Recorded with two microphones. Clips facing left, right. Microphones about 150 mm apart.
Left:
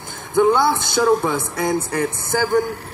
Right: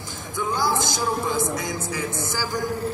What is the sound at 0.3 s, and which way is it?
A man's voice, 65° left (ahead or behind).